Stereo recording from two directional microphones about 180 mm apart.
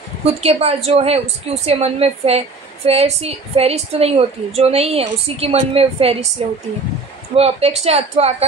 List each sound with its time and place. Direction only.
0.2 s a woman's voice: 35° right (ahead or behind)